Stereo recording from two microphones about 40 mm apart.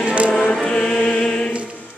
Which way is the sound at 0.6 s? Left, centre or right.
Left.